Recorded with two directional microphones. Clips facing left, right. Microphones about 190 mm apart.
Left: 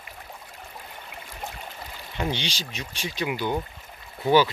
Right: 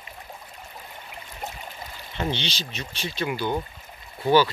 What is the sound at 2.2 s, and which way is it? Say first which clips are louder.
Speech: even; 10° left (ahead or behind).